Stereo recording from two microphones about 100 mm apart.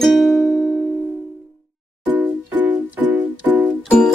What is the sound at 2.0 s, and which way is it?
Music, 15° right (ahead or behind).